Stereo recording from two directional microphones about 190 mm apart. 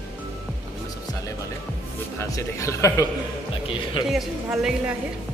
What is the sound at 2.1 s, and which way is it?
Speech, 15° left (ahead or behind).